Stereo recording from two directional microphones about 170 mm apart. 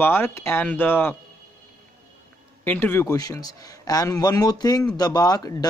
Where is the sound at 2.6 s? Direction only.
10° left (ahead or behind).